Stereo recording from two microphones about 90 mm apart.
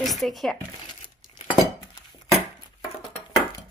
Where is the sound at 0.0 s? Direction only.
Centre (ahead or behind).